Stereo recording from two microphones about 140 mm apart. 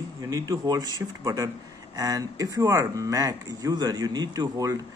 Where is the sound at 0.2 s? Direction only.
25° right (ahead or behind).